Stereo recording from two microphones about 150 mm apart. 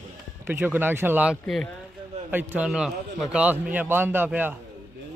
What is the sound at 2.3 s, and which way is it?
A man's voice, 10° right (ahead or behind).